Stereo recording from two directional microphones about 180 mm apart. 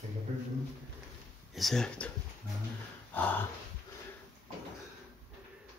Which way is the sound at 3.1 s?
10° left (ahead or behind).